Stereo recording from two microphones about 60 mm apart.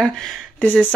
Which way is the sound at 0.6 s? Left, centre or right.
Left.